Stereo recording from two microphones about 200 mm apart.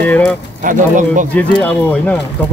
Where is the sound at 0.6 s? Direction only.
40° right (ahead or behind).